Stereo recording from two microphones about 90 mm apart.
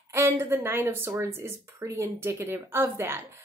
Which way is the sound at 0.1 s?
30° right (ahead or behind).